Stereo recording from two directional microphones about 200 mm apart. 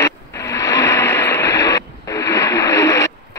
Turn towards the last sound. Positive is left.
turn(degrees=15)  # may be behind; listen again after turning